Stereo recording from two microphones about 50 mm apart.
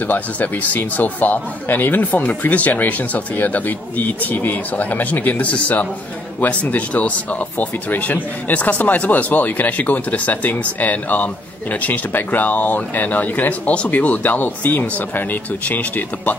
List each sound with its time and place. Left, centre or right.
0.0 s speech: left